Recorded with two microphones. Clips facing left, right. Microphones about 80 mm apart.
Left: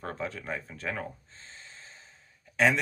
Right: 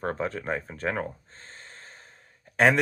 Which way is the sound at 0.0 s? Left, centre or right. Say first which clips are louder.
Right 6 dB; right.